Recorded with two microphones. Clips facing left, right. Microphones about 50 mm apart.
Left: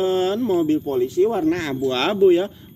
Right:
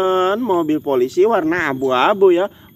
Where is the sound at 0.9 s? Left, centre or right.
Right.